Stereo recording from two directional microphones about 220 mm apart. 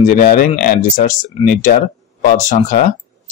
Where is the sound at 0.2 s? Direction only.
40° left (ahead or behind).